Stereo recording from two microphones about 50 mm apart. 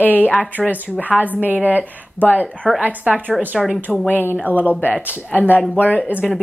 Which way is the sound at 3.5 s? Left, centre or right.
Centre.